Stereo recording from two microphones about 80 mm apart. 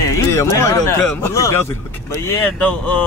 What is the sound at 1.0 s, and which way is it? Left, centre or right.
Speech, centre.